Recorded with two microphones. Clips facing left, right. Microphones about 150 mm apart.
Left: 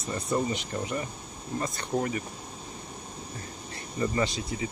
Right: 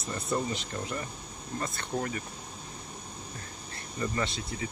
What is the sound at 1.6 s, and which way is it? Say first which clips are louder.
Speech: left 4 dB; 10° left (ahead or behind).